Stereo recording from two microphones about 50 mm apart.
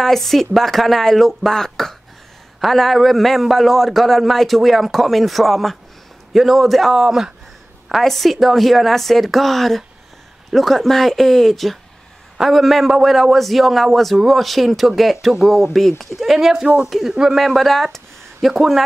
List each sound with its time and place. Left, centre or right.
0.0 s a woman's voice: centre
16.6 s speech: right
17.4 s speech: centre